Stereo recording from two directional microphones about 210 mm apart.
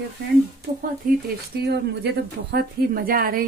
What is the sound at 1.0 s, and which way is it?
Speech, 40° right (ahead or behind).